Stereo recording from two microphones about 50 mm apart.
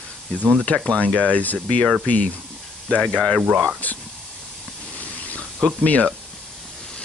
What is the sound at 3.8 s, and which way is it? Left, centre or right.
Speech, left.